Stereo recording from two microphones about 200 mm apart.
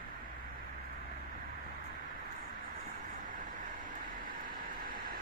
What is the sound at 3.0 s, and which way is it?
Vehicle, 40° right (ahead or behind).